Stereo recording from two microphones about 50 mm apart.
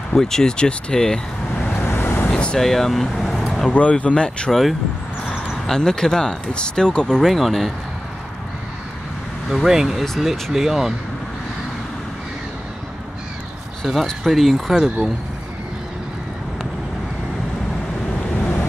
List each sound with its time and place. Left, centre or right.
0.1 s speech: centre
1.8 s vehicle: left
2.3 s speech: centre
2.6 s speech: centre
3.7 s speech: left
4.5 s speech: centre
7.2 s speech: centre
9.5 s speech: centre
10.0 s speech: centre
10.5 s speech: centre
14.0 s speech: centre
18.4 s waves: left